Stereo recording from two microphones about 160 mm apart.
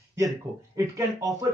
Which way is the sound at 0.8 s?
20° right (ahead or behind).